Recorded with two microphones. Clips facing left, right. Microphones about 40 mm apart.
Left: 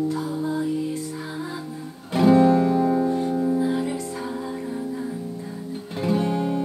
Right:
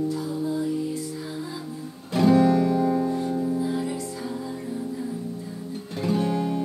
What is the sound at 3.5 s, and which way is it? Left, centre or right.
Music, left.